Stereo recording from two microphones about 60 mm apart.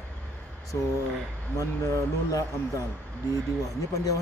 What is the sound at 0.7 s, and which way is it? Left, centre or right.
Speech, left.